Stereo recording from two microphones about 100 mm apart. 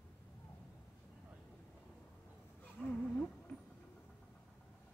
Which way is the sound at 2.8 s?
10° left (ahead or behind).